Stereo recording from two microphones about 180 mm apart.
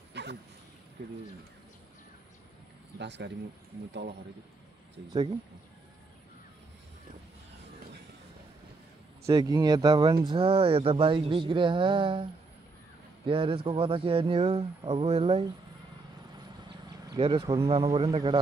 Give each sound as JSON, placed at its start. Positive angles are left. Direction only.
{"t": 0.1, "sound": "a sound", "side_deg": -70}
{"t": 1.0, "sound": "speech", "side_deg": -65}
{"t": 3.0, "sound": "speech", "side_deg": -75}
{"t": 9.2, "sound": "speech", "side_deg": -20}
{"t": 16.6, "sound": "a sound", "side_deg": -25}
{"t": 17.9, "sound": "speech", "side_deg": -25}